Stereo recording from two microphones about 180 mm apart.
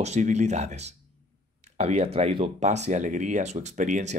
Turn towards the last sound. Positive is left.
turn(degrees=-40)  # may be behind; listen again after turning